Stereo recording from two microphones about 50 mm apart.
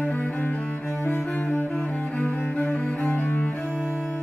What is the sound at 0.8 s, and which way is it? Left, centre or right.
Cello, centre.